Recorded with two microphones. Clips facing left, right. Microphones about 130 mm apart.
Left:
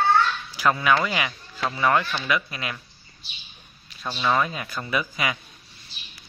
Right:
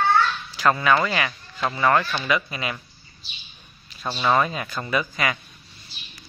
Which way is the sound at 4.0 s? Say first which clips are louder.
Right 2 dB; 10° right (ahead or behind).